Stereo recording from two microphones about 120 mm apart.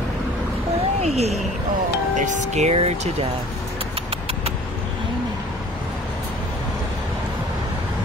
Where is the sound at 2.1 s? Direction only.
80° right; by 3.2 s 60° right (ahead or behind).